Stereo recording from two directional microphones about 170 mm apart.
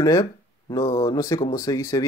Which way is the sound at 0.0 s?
20° left (ahead or behind).